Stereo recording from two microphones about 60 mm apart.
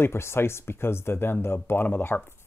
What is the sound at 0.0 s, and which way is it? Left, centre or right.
Speech, left.